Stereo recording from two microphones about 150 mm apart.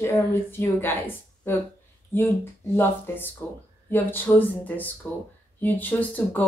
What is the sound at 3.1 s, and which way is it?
A woman's voice, 15° left (ahead or behind).